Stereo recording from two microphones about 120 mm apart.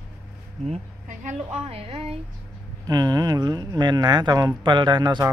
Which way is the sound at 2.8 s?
35° right (ahead or behind).